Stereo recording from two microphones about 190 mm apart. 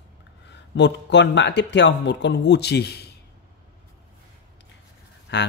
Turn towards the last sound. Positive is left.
turn(degrees=65)  # may be behind; listen again after turning